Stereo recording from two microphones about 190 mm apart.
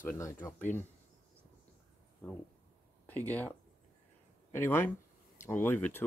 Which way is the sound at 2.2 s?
10° left (ahead or behind).